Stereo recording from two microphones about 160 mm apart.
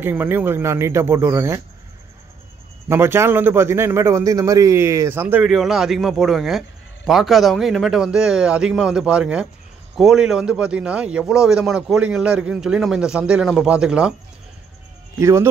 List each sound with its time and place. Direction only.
0.0 s a man's voice: 15° right (ahead or behind)
2.9 s a man's voice: 15° right (ahead or behind)
15.1 s speech: 20° right (ahead or behind)